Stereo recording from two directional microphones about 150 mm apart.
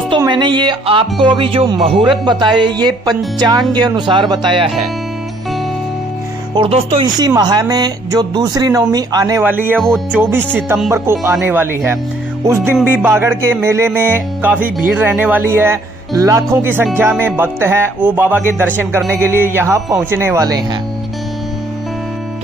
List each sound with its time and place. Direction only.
0.3 s speech: 30° right (ahead or behind)
6.5 s speech: 35° right (ahead or behind)
9.4 s music: 10° right (ahead or behind)
9.8 s speech: centre (ahead or behind)
10.9 s music: 20° right (ahead or behind)